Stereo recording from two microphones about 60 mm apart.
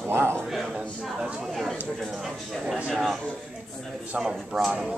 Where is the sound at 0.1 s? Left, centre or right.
Right.